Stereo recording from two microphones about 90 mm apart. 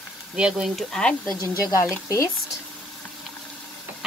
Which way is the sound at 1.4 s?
35° left (ahead or behind).